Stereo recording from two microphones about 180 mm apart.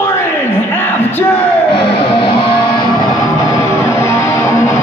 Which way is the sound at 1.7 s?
30° left (ahead or behind).